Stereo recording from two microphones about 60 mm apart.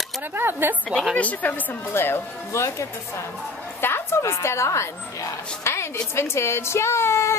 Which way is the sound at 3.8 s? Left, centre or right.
Left.